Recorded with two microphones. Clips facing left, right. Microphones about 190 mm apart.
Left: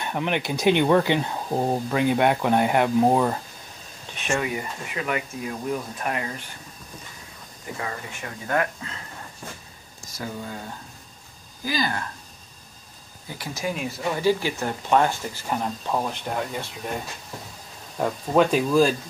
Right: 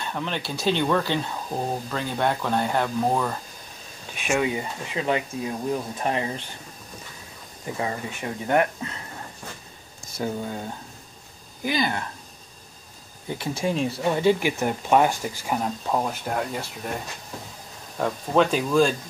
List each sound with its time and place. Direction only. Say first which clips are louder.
0.0 s speech: left 4 dB; 15° left (ahead or behind)
4.2 s speech: right 2 dB; 10° right (ahead or behind)
4.5 s speech: right 2 dB; 25° right (ahead or behind)
7.8 s speech: right 5 dB; 20° right (ahead or behind)
11.6 s speech: right 2 dB; 20° right (ahead or behind)
13.3 s speech: right 4 dB; 25° right (ahead or behind); by 16.6 s 5° right (ahead or behind)
17.9 s speech: left 1 dB; 5° left (ahead or behind)